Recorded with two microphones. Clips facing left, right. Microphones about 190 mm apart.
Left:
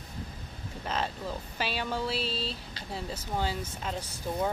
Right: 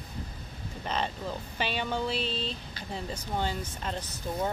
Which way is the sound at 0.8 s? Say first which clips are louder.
Right 1 dB; 5° left (ahead or behind).